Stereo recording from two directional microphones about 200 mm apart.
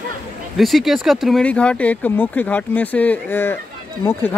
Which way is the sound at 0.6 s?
Centre (ahead or behind).